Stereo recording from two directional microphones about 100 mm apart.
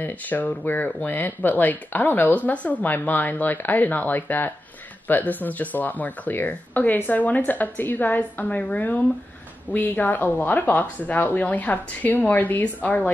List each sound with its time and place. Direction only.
0.0 s speech: 15° left (ahead or behind)